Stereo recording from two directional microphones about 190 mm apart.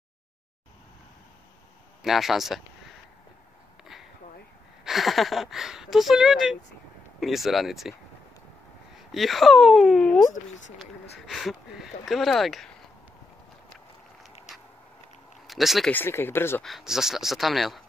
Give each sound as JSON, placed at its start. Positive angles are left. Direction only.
{"t": 2.0, "sound": "speech", "side_deg": 0}
{"t": 3.8, "sound": "a sound", "side_deg": 0}
{"t": 4.8, "sound": "speech", "side_deg": 0}
{"t": 8.9, "sound": "speech", "side_deg": 0}
{"t": 15.4, "sound": "speech", "side_deg": 0}
{"t": 15.9, "sound": "speech", "side_deg": 10}
{"t": 16.6, "sound": "speech", "side_deg": 0}